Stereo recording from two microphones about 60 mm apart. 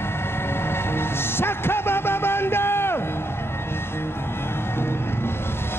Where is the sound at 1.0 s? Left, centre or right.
Left.